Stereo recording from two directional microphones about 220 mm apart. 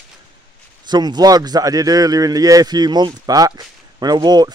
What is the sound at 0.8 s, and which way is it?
Speech, 20° right (ahead or behind).